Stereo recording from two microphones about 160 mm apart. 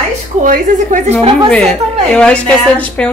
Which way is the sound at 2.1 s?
5° left (ahead or behind).